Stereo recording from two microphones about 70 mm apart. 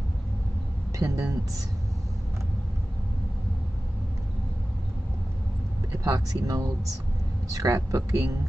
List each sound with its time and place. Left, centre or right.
0.9 s speech: right
5.9 s speech: right